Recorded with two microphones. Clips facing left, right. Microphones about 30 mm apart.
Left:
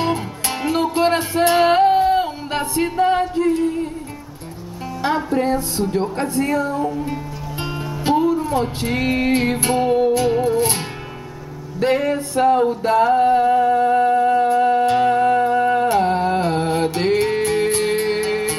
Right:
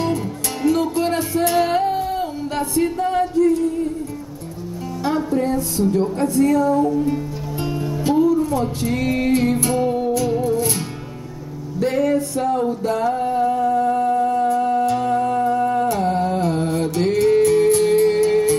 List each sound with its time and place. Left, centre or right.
0.0 s music: left
5.0 s speech: left
7.6 s music: left
11.8 s music: left